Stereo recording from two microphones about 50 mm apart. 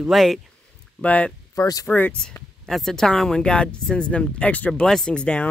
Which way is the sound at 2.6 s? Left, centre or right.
Centre.